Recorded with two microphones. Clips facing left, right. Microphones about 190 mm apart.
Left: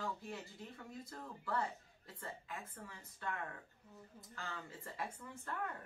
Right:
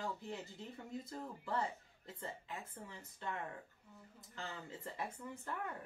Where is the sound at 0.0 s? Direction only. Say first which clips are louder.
Right 1 dB; 20° right (ahead or behind).